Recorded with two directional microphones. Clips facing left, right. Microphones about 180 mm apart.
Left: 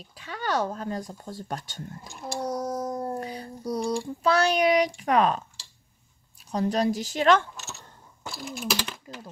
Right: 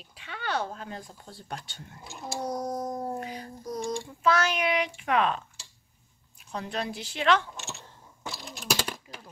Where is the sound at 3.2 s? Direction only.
35° left (ahead or behind).